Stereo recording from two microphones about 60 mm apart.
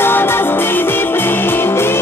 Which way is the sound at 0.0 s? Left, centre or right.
Left.